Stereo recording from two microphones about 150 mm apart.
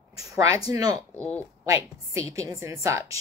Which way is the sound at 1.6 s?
20° right (ahead or behind).